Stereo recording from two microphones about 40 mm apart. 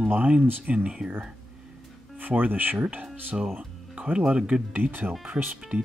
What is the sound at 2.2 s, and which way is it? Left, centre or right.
Speech, right.